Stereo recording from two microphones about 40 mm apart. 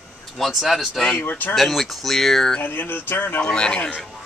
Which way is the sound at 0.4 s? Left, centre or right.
Centre.